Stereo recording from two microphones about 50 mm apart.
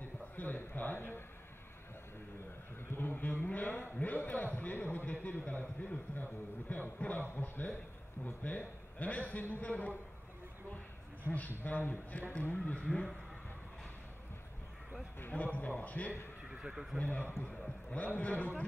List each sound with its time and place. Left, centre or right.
0.0 s a sound: left
2.9 s a man's voice: left
11.2 s a man's voice: left
15.3 s a man's voice: left
16.4 s speech: centre
17.0 s a man's voice: left